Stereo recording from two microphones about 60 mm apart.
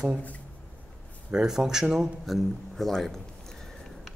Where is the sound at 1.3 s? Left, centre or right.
Centre.